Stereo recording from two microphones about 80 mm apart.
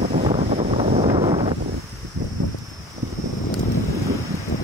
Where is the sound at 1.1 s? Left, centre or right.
Right.